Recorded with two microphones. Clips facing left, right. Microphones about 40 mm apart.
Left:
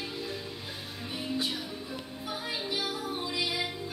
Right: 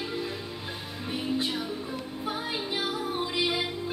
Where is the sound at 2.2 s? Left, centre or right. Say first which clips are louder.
Right 3 dB; right.